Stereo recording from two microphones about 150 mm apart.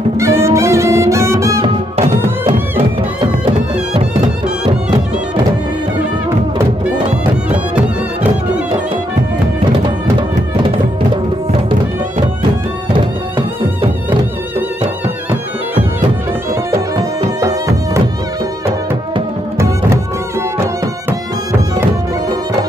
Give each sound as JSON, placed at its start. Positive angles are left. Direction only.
{"t": 0.2, "sound": "music", "side_deg": -20}
{"t": 17.4, "sound": "music", "side_deg": -20}